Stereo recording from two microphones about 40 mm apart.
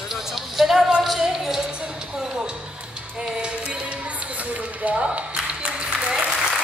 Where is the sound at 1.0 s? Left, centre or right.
Centre.